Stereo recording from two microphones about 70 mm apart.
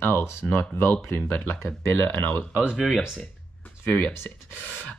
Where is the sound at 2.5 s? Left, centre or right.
Centre.